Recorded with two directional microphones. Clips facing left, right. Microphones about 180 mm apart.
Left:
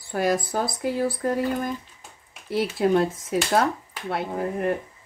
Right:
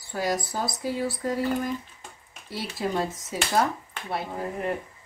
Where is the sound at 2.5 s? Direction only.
60° left (ahead or behind).